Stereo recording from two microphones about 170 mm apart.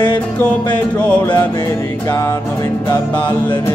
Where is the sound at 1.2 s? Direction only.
25° left (ahead or behind).